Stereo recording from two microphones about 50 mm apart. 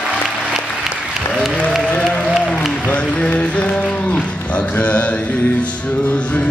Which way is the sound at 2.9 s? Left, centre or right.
Left.